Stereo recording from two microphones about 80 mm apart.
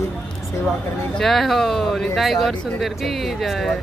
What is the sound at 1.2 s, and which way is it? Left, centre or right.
Speech, centre.